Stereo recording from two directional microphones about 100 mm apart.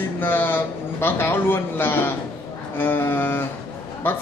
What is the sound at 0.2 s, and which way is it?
A man's voice, 20° left (ahead or behind).